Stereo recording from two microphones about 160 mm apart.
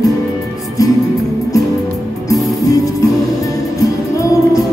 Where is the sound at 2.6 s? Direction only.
20° left (ahead or behind).